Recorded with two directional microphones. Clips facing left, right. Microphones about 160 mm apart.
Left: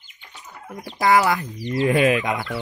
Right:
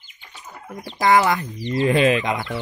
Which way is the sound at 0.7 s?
Centre (ahead or behind).